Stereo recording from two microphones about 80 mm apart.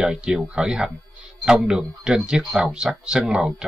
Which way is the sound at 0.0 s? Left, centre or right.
Centre.